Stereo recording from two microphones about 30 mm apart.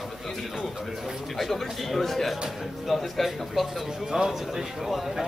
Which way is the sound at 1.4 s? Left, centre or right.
Centre.